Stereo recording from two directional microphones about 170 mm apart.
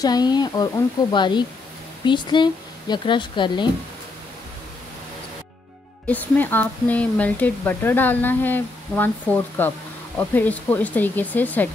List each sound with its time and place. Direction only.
0.0 s speech: 25° left (ahead or behind)
6.0 s speech: 10° left (ahead or behind)